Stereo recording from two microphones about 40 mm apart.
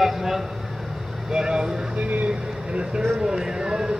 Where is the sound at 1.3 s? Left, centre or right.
Centre.